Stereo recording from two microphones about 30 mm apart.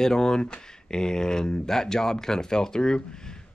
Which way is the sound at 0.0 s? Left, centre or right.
Left.